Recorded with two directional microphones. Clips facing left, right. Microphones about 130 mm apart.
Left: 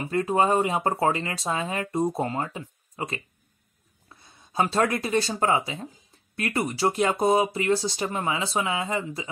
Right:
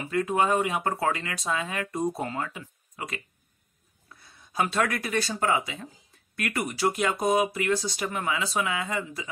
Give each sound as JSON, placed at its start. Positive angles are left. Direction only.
{"t": 0.0, "sound": "speech", "side_deg": 35}
{"t": 4.2, "sound": "speech", "side_deg": 25}